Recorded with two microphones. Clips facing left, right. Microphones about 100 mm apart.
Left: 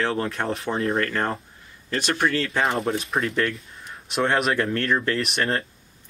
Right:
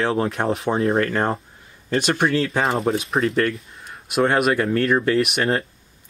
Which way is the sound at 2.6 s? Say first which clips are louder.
Even; 25° right (ahead or behind).